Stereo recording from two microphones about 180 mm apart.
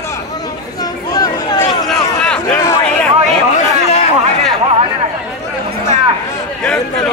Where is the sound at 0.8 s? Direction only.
20° left (ahead or behind).